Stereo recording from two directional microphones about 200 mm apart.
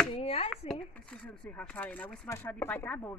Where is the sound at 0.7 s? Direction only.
5° left (ahead or behind).